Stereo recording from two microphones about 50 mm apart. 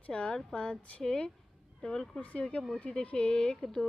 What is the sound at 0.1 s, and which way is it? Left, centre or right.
A woman's voice, centre.